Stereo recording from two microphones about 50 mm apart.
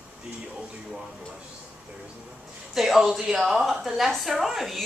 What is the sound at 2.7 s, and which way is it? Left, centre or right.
A woman's voice, centre.